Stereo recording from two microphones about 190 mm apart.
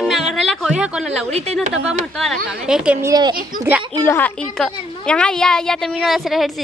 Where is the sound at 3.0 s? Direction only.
20° right (ahead or behind).